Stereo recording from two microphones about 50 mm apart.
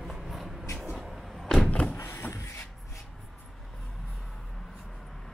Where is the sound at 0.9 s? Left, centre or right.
Centre.